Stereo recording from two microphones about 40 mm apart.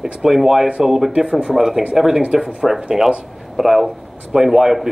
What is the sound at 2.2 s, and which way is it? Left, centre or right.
Speech, right.